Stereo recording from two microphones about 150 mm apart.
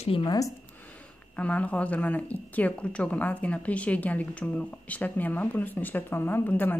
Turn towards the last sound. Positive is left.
turn(degrees=15)  # may be behind; listen again after turning